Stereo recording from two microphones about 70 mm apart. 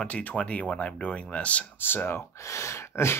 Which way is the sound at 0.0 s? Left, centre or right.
Centre.